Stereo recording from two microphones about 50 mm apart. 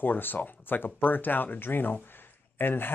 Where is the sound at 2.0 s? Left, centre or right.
Left.